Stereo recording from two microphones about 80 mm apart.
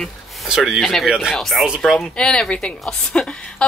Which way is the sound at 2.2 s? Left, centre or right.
Centre.